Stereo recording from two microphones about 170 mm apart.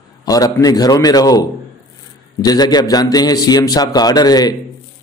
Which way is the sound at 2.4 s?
25° left (ahead or behind).